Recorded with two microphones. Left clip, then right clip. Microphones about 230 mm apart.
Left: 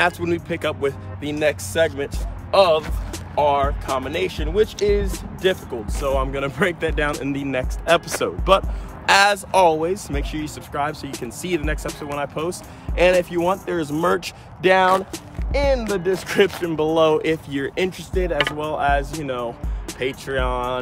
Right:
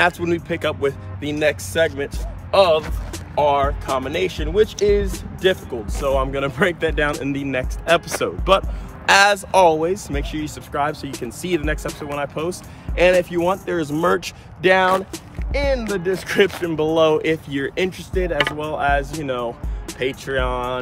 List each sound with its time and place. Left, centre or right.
0.0 s speech: centre